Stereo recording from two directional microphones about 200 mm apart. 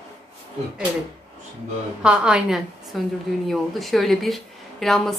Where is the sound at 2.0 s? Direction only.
5° right (ahead or behind).